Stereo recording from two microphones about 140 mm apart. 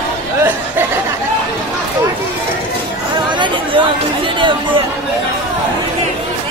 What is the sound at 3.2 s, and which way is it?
Chatter, 35° right (ahead or behind).